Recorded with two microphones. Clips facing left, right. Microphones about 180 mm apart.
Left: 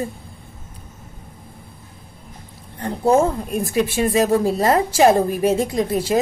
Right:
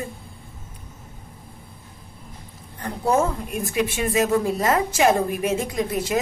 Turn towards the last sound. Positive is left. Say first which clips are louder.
# left 4 dB
turn(degrees=35)  # may be behind; listen again after turning